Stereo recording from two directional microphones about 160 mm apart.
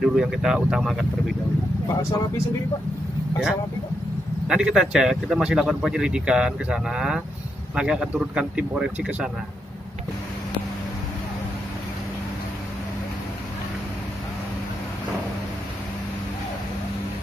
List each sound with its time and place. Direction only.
0.0 s speech: centre (ahead or behind)
1.9 s speech: 20° left (ahead or behind)
4.5 s speech: 5° right (ahead or behind)